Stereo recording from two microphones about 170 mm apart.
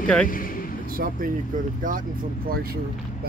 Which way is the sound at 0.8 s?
55° right (ahead or behind).